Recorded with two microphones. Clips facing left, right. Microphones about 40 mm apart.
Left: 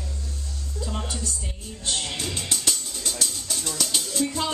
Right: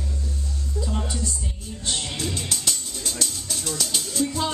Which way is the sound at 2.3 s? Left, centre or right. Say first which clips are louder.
Even; centre.